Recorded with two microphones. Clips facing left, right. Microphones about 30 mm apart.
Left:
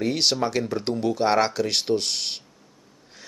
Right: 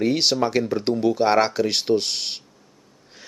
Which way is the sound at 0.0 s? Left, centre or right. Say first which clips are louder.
Right 3 dB; centre.